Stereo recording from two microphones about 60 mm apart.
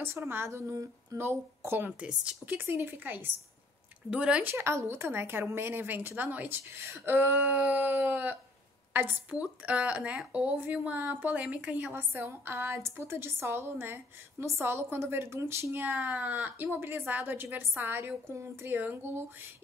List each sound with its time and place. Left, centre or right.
0.3 s a woman's voice: right
2.0 s a woman's voice: centre
2.4 s a woman's voice: right
4.1 s speech: centre
4.4 s a woman's voice: right
6.7 s a woman's voice: right
7.2 s a woman's voice: right
11.9 s a woman's voice: right
15.7 s a woman's voice: right
18.3 s a woman's voice: right
18.7 s a woman's voice: right